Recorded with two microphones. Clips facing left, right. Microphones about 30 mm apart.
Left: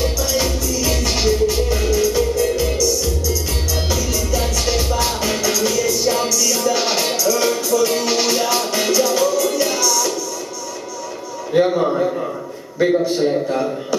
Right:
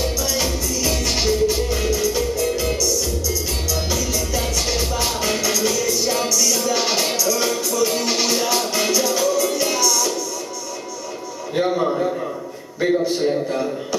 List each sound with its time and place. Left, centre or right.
0.0 s music: centre
3.7 s music: centre
11.5 s a sound: centre
12.7 s a man's voice: centre